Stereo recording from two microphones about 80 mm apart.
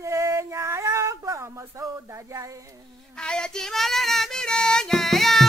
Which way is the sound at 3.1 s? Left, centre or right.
Centre.